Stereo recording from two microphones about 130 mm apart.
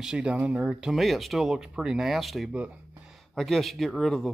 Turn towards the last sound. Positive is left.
turn(degrees=5)  # may be behind; listen again after turning